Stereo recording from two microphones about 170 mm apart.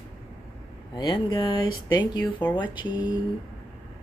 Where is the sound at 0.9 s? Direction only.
25° left (ahead or behind).